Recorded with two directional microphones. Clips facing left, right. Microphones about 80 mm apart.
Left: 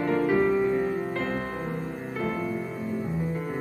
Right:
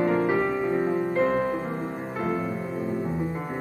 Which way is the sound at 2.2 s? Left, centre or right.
Right.